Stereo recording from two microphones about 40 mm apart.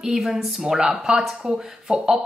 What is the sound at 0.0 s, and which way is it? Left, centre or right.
Speech, centre.